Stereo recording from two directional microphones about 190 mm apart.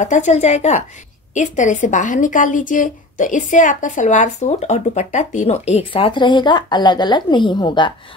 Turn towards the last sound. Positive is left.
turn(degrees=25)  # may be behind; listen again after turning